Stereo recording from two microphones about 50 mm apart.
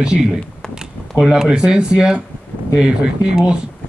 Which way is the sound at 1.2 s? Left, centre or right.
Centre.